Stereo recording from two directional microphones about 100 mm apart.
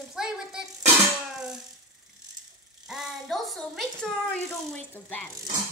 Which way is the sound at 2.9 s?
Centre (ahead or behind).